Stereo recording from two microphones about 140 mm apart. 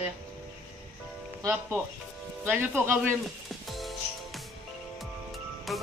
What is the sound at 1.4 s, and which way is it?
Speech, 15° right (ahead or behind).